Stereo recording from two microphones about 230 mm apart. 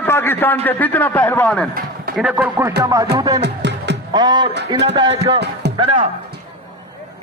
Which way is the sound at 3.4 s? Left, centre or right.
Right.